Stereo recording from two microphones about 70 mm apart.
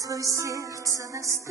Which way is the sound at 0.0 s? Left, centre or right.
Right.